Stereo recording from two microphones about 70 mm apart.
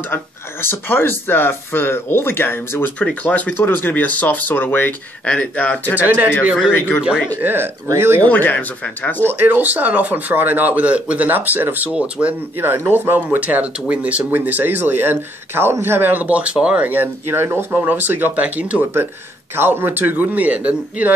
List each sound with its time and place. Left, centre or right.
0.1 s speech: left
3.0 s speech: centre
5.2 s speech: centre
5.9 s speech: right
7.4 s speech: right
8.2 s speech: left
9.4 s speech: right
12.5 s speech: right
19.5 s speech: right